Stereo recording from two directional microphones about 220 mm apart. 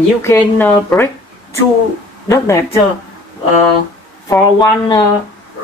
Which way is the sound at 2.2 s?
15° left (ahead or behind).